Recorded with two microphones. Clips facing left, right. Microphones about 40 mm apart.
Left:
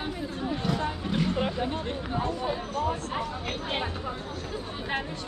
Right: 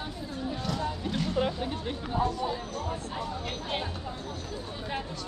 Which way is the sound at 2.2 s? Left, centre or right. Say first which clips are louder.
Right 2 dB; left.